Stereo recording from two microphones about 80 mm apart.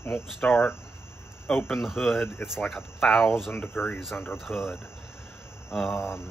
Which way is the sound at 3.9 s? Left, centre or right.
Centre.